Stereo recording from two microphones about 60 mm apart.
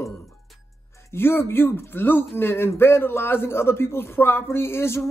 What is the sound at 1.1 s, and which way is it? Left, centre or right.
Speech, left.